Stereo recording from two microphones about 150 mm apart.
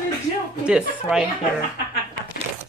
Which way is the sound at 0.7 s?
5° right (ahead or behind).